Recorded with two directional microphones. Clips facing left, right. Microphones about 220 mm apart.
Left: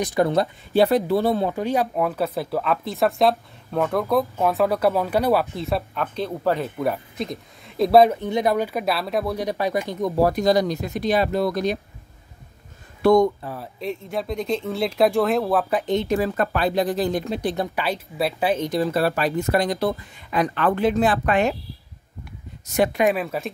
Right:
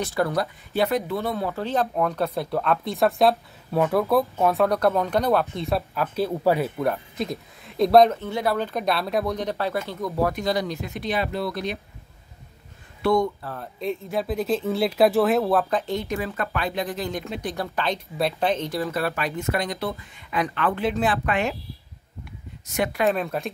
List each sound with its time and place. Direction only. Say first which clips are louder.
0.0 s speech: left 4 dB; 20° left (ahead or behind)
1.5 s speech: left 2 dB; 10° left (ahead or behind); by 11.8 s 40° left (ahead or behind)
13.0 s speech: left 5 dB; 45° left (ahead or behind)
13.4 s speech: left 2 dB; 10° left (ahead or behind)
13.7 s speech: right 2 dB; centre (ahead or behind)
15.7 s speech: left 4 dB; 20° left (ahead or behind)
16.1 s speech: left 6 dB; 40° left (ahead or behind)
17.6 s speech: left 2 dB; 10° left (ahead or behind)
18.7 s speech: left 5 dB; 30° left (ahead or behind)
23.1 s speech: left 1 dB; 5° left (ahead or behind)